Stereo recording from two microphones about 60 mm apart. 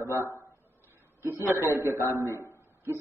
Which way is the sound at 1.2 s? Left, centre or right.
Right.